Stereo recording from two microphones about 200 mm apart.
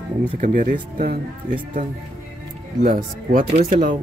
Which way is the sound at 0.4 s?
40° right (ahead or behind).